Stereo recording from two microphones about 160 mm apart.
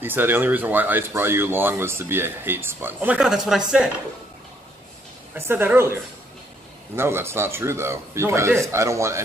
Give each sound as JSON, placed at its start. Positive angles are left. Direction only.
{"t": 0.0, "sound": "speech", "side_deg": -15}
{"t": 5.3, "sound": "speech", "side_deg": -10}
{"t": 7.0, "sound": "speech", "side_deg": -15}